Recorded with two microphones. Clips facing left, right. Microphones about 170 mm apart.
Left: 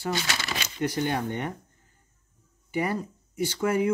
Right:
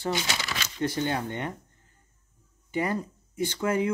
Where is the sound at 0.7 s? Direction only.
15° left (ahead or behind).